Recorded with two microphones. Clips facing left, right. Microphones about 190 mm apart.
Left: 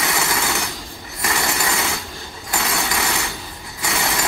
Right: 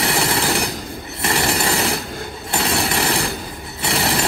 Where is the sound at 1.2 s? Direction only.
30° right (ahead or behind).